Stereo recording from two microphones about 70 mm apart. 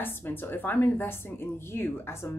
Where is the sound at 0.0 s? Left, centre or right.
Left.